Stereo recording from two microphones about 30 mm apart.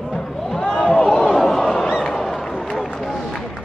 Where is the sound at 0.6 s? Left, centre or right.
Left.